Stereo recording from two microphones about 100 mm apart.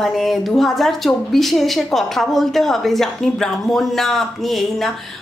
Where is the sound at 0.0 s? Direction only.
Centre (ahead or behind).